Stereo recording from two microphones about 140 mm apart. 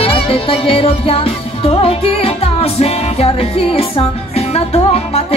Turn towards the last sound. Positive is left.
turn(degrees=40)  # may be behind; listen again after turning